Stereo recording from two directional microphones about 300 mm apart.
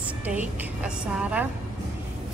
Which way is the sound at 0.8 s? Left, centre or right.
Centre.